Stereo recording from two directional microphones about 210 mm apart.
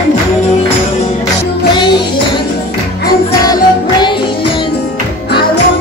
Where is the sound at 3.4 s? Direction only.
20° left (ahead or behind).